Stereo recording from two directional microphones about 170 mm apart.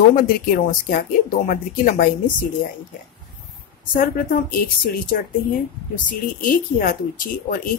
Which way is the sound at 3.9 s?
55° left (ahead or behind).